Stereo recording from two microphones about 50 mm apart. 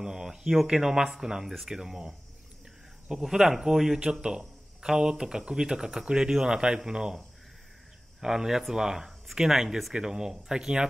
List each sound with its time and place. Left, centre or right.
0.0 s speech: centre